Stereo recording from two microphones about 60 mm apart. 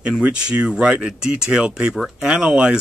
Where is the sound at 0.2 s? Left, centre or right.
Centre.